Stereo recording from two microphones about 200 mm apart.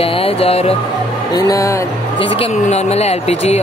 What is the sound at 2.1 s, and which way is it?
Speech, 30° left (ahead or behind).